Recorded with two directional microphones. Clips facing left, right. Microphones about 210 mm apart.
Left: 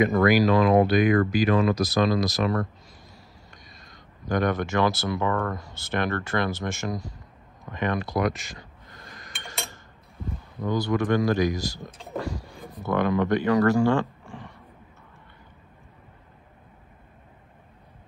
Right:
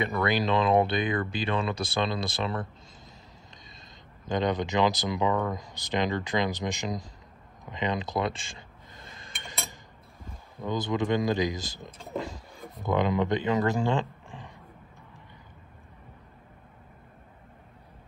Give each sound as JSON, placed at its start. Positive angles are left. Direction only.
{"t": 0.3, "sound": "speech", "side_deg": -25}
{"t": 3.6, "sound": "a sound", "side_deg": -25}
{"t": 4.3, "sound": "speech", "side_deg": -20}
{"t": 7.7, "sound": "chink", "side_deg": -20}
{"t": 10.6, "sound": "speech", "side_deg": -20}